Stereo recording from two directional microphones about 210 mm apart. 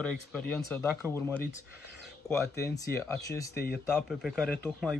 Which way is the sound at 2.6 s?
10° left (ahead or behind).